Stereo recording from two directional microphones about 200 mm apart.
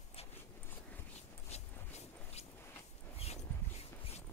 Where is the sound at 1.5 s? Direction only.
30° left (ahead or behind).